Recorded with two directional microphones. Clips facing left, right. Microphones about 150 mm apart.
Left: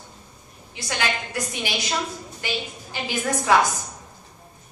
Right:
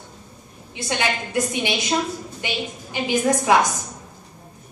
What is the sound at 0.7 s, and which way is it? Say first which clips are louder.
A woman's voice: right 3 dB; 20° right (ahead or behind).